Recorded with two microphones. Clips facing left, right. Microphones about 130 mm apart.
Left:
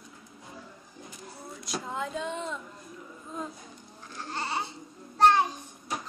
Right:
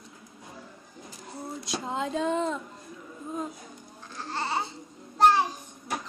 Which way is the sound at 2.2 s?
40° right (ahead or behind).